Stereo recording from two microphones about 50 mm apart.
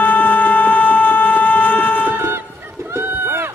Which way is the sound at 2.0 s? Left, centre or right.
Right.